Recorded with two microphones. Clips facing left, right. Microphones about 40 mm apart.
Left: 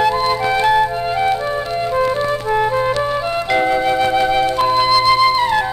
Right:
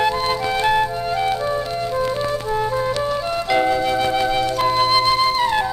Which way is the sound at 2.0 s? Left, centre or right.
Left.